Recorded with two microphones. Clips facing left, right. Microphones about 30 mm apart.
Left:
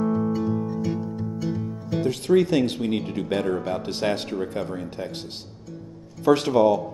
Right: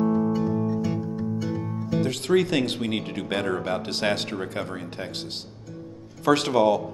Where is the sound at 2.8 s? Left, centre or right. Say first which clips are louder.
Left 2 dB; right.